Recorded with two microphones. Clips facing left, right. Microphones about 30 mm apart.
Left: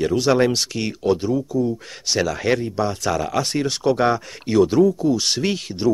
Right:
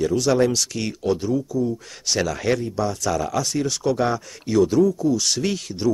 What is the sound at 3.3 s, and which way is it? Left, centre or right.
Speech, left.